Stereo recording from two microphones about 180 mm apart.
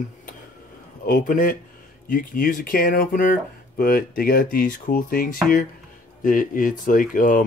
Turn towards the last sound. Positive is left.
turn(degrees=50)  # may be behind; listen again after turning